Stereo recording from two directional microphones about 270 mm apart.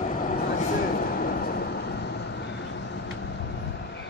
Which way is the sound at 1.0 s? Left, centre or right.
Left.